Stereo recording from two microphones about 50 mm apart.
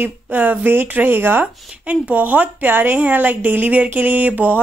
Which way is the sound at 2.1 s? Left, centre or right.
Right.